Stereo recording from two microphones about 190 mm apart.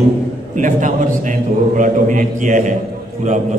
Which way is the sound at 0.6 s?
40° right (ahead or behind).